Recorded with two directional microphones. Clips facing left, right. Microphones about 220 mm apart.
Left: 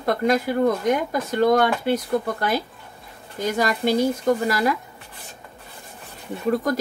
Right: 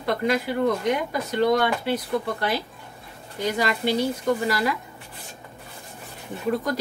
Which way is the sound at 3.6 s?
45° left (ahead or behind).